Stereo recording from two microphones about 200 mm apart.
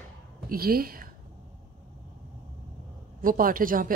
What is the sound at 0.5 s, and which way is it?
Speech, 50° right (ahead or behind).